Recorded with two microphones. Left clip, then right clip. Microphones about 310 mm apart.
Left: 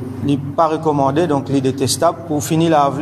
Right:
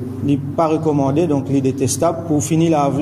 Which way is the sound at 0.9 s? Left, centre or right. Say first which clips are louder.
Left 2 dB; left.